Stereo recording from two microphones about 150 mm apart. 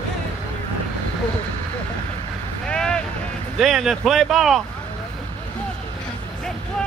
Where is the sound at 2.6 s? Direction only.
5° left (ahead or behind).